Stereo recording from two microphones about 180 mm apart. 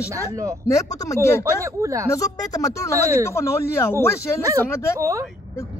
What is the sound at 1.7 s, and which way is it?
Speech, 15° right (ahead or behind).